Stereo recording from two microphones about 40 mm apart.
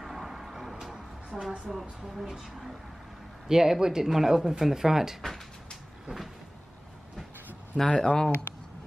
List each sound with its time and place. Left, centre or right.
0.0 s a sound: centre
1.7 s speech: centre
7.8 s speech: left